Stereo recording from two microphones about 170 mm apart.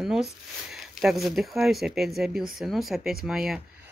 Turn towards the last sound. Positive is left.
turn(degrees=0)  # may be behind; listen again after turning